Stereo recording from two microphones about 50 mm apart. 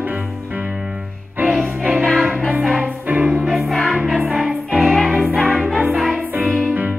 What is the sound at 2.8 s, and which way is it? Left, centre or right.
Music, right.